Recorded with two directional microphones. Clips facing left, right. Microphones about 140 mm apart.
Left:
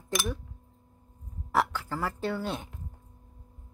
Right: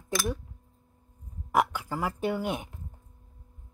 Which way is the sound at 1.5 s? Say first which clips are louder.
Right 2 dB; 15° right (ahead or behind).